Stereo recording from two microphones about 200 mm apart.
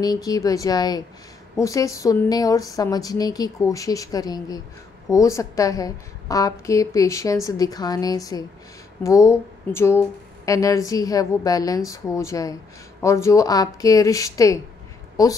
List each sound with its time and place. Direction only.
0.0 s speech: 20° left (ahead or behind)